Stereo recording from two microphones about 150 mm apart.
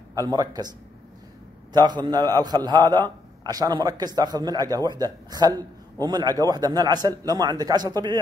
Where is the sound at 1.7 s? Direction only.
30° right (ahead or behind).